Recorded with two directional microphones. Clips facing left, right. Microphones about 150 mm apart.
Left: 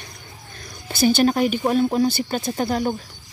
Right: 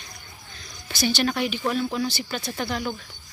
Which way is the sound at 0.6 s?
50° left (ahead or behind).